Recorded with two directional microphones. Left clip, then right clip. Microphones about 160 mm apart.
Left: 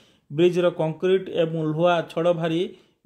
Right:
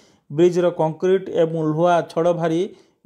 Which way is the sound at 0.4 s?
35° right (ahead or behind).